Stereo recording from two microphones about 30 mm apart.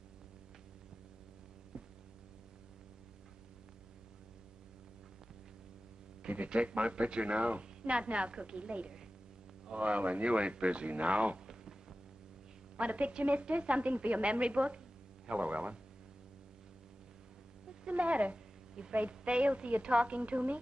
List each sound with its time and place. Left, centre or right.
1.7 s hum: right
6.2 s a sound: right
6.8 s a woman's voice: right
12.7 s a woman's voice: right
17.8 s a woman's voice: right